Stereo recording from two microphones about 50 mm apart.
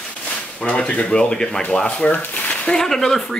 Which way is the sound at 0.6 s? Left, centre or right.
Left.